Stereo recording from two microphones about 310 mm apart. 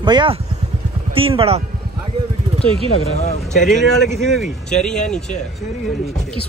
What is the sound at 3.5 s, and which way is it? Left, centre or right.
Speech, centre.